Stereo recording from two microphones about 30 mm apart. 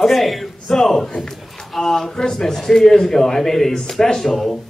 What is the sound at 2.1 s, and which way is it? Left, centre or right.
Speech, left.